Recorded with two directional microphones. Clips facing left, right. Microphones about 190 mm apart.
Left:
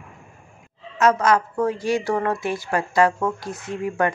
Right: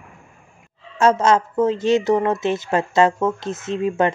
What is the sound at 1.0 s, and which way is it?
A woman's voice, 25° right (ahead or behind).